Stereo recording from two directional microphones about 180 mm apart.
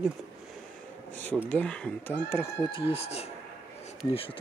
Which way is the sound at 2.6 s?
30° left (ahead or behind).